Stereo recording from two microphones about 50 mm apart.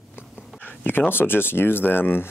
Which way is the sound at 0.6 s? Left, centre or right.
Left.